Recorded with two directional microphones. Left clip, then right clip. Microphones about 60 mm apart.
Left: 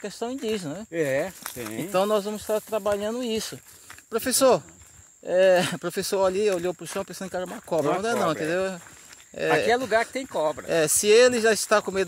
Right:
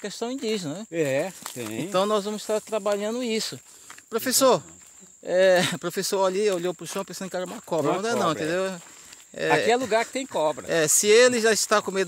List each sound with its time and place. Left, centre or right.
0.0 s speech: centre
0.9 s speech: right
1.4 s speech: right
1.9 s speech: left
2.3 s speech: centre
4.1 s speech: left
5.2 s speech: centre
5.9 s speech: left
7.3 s speech: centre
7.7 s speech: left
9.7 s speech: right
10.7 s speech: left